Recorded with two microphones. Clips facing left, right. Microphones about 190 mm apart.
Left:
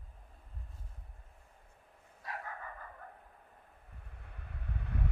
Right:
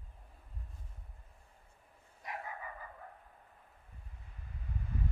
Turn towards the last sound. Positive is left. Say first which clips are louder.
# left 1 dB
turn(degrees=70)  # may be behind; listen again after turning